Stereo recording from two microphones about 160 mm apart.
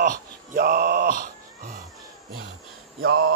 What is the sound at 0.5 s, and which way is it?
Music, 65° right (ahead or behind).